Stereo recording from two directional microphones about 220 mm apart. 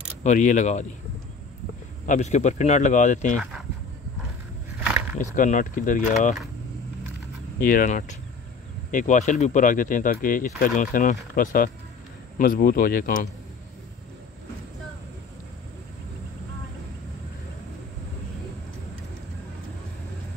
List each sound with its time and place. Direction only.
0.2 s speech: 35° left (ahead or behind)
2.0 s speech: 30° left (ahead or behind)
5.2 s speech: 35° left (ahead or behind)
7.6 s speech: 40° left (ahead or behind)